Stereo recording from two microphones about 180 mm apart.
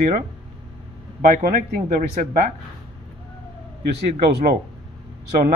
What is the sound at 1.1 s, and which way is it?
Speech, 45° right (ahead or behind).